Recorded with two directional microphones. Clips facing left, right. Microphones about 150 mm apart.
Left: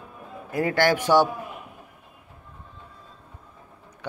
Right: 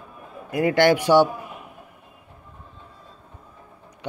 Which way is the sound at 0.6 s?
20° right (ahead or behind).